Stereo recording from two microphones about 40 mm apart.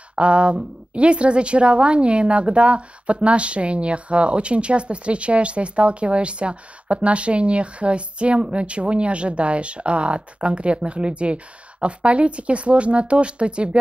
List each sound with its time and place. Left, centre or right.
0.1 s speech: right